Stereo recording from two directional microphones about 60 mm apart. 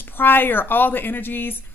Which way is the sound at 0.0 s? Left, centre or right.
Left.